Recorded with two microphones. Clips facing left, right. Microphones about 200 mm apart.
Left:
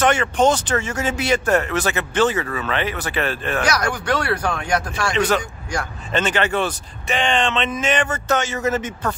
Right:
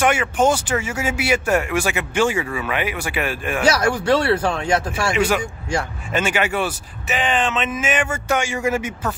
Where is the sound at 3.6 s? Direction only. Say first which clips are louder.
Right 6 dB; 25° right (ahead or behind).